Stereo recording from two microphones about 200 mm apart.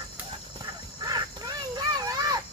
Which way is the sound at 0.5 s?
20° right (ahead or behind).